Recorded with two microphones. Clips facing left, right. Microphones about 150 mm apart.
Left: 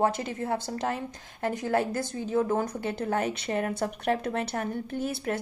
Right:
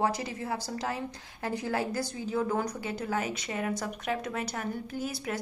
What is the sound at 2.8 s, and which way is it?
A woman's voice, 55° left (ahead or behind).